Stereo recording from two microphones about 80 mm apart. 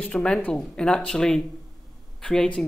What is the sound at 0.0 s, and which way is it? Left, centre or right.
Speech, centre.